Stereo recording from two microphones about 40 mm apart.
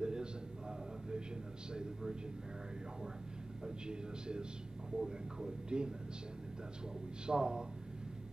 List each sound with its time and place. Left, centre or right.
0.0 s a sound: centre
1.7 s speech: right
3.6 s speech: right
7.2 s speech: right